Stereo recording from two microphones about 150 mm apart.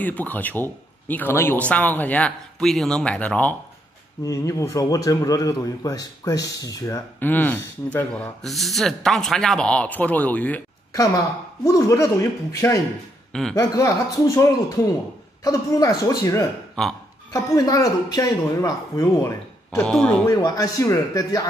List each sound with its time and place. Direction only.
0.0 s a man's voice: 10° left (ahead or behind)
4.2 s a man's voice: 20° left (ahead or behind)
10.9 s speech: 20° left (ahead or behind)
13.3 s speech: 5° left (ahead or behind)
13.6 s speech: 25° left (ahead or behind)
19.8 s speech: 5° left (ahead or behind)
20.2 s speech: 25° left (ahead or behind)